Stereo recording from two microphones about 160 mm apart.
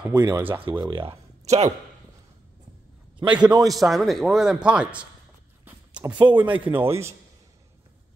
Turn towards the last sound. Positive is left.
turn(degrees=-15)  # may be behind; listen again after turning